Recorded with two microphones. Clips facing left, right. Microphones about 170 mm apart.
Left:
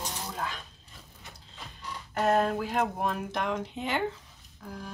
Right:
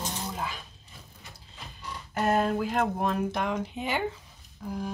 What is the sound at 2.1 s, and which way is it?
Speech, centre (ahead or behind).